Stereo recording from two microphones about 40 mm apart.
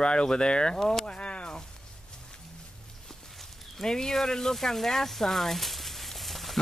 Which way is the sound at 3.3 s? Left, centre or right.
Centre.